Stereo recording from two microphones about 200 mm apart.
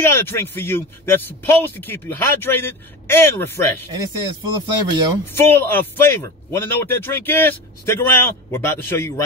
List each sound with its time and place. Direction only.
0.0 s a man's voice: 10° left (ahead or behind)
4.6 s speech: 20° right (ahead or behind)
5.3 s a man's voice: 10° left (ahead or behind)